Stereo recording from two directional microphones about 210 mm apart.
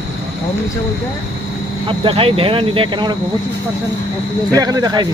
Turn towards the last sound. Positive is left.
turn(degrees=-20)  # may be behind; listen again after turning